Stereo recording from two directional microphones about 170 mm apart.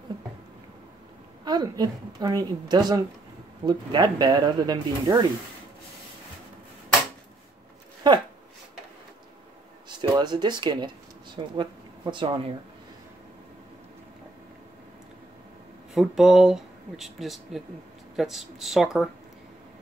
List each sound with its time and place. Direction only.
1.4 s a woman's voice: 25° right (ahead or behind)
8.0 s speech: 25° right (ahead or behind)
9.8 s speech: 25° right (ahead or behind)
15.9 s speech: centre (ahead or behind)